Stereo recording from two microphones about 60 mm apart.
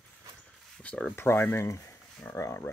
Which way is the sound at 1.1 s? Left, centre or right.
Left.